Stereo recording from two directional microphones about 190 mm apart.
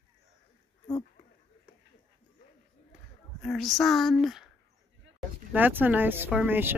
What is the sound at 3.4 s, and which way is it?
Speech, centre (ahead or behind).